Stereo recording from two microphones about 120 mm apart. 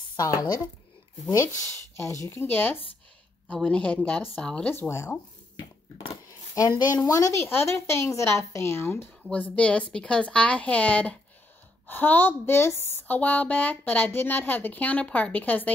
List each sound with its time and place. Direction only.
0.2 s a woman's voice: 30° left (ahead or behind); by 4.7 s 10° left (ahead or behind)
4.7 s a woman's voice: 20° left (ahead or behind)
6.6 s a woman's voice: 30° left (ahead or behind)